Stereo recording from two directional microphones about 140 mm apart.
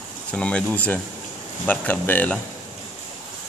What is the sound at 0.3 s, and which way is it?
Speech, 10° left (ahead or behind).